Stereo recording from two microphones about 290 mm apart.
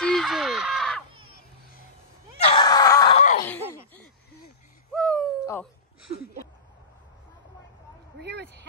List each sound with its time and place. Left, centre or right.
0.0 s crow: centre
2.4 s screaming: centre
4.9 s owl: centre
8.2 s a sound: right